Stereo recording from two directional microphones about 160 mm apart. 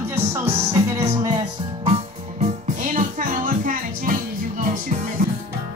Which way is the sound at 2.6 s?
50° right (ahead or behind).